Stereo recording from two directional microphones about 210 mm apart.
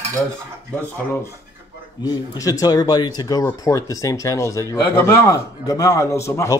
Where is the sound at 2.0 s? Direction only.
15° left (ahead or behind).